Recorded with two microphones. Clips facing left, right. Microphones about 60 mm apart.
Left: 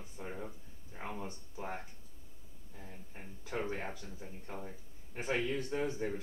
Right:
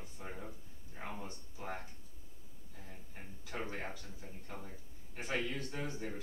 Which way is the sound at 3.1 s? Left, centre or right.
Left.